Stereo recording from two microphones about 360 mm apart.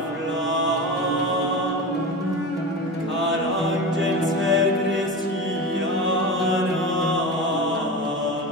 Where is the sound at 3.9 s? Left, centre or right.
Right.